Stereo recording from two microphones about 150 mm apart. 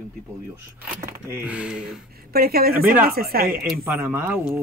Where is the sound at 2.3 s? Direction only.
90° right.